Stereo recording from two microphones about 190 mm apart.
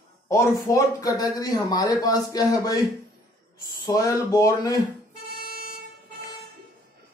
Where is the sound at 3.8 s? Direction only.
15° left (ahead or behind).